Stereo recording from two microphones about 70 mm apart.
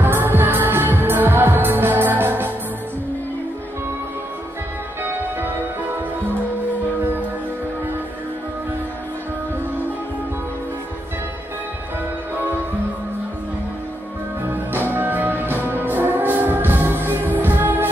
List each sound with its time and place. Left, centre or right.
0.0 s music: right
14.5 s music: right